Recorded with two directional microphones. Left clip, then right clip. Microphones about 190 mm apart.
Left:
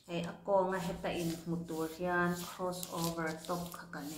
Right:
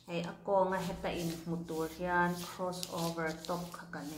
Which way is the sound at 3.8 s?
15° left (ahead or behind).